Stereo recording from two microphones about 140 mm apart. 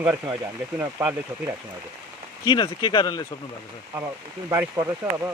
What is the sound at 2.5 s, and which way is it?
Speech, 30° left (ahead or behind).